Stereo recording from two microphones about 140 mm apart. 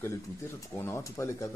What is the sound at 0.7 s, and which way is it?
Speech, 20° left (ahead or behind).